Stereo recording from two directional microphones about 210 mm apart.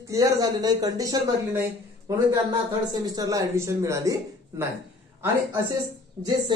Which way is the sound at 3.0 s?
15° right (ahead or behind).